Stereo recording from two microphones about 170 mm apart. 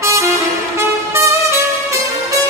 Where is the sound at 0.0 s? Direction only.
15° right (ahead or behind).